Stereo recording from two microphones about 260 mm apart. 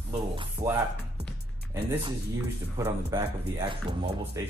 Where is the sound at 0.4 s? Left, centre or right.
Centre.